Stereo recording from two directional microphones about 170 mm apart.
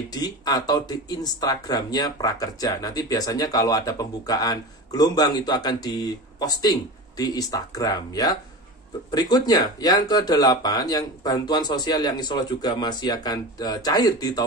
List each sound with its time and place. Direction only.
0.1 s speech: 25° left (ahead or behind)